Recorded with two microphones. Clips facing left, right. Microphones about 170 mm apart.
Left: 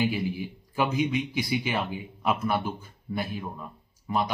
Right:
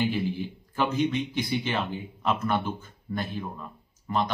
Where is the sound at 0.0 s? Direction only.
10° left (ahead or behind).